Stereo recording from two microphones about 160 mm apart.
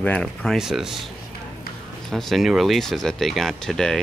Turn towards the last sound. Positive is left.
turn(degrees=0)  # may be behind; listen again after turning